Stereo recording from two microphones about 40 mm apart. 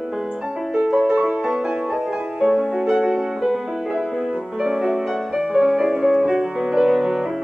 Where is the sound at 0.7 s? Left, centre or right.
Centre.